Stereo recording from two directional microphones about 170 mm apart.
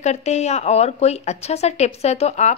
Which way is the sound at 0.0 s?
40° left (ahead or behind).